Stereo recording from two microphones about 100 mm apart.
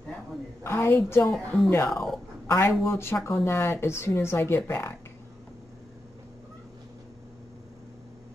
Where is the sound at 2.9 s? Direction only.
25° left (ahead or behind).